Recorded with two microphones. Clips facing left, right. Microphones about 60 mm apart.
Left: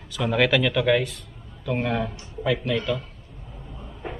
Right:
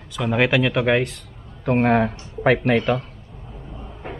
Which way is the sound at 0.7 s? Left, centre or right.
Right.